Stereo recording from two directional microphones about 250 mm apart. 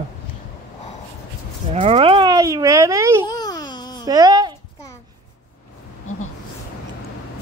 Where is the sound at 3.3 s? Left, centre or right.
Centre.